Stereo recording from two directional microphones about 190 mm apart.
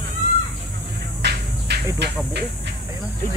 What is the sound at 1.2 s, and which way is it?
Music, 60° right (ahead or behind).